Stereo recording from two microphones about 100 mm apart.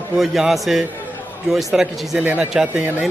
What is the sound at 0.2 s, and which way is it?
A man's voice, 5° right (ahead or behind).